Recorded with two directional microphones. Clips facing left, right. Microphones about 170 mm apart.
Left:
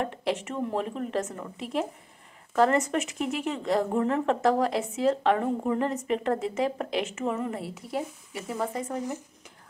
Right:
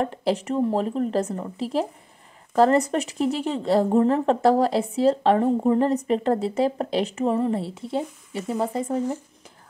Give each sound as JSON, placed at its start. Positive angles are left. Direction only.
{"t": 0.0, "sound": "speech", "side_deg": -35}